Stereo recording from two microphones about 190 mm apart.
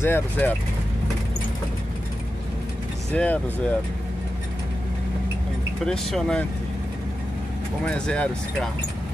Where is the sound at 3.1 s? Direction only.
10° left (ahead or behind).